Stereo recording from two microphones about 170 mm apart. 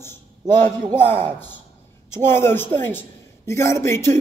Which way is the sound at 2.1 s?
15° left (ahead or behind).